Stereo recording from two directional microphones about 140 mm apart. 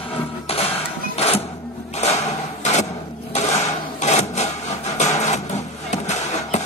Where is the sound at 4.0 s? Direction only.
50° left (ahead or behind).